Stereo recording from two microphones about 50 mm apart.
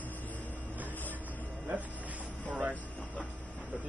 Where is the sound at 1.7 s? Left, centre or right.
Right.